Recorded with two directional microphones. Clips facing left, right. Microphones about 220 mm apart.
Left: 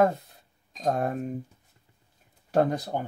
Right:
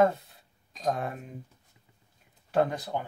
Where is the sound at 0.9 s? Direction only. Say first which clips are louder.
Left 7 dB; 45° left (ahead or behind).